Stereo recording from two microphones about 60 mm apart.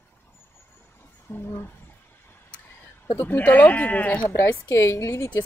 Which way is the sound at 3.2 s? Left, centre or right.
Left.